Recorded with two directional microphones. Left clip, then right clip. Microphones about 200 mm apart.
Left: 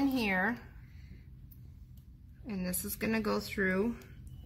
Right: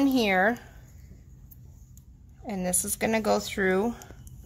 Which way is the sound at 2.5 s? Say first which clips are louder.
Right 9 dB; 50° right (ahead or behind).